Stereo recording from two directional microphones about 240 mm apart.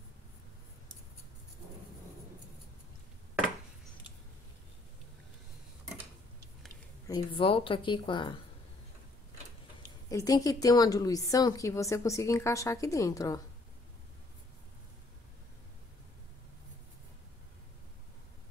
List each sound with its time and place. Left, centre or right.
7.1 s a woman's voice: left
10.0 s a woman's voice: centre